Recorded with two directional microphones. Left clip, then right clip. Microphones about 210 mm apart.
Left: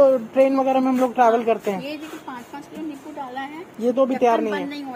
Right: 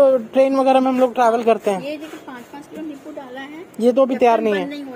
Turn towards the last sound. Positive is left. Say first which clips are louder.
# right 4 dB
turn(degrees=-45)  # may be behind; listen again after turning